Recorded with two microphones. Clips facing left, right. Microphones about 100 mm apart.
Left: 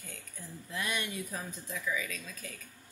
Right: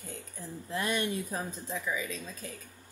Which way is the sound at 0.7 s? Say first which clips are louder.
Right 5 dB; 35° right (ahead or behind).